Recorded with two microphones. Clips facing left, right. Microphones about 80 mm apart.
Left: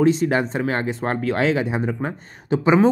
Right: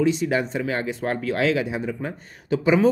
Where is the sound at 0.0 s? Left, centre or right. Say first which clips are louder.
Left 3 dB; left.